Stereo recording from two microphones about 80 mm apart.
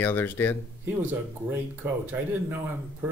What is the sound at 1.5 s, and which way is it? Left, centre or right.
Speech, right.